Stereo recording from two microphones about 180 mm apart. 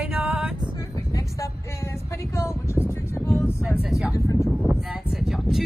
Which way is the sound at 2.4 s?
15° left (ahead or behind).